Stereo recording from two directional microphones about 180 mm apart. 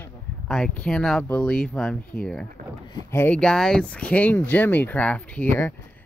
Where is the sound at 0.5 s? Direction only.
5° left (ahead or behind).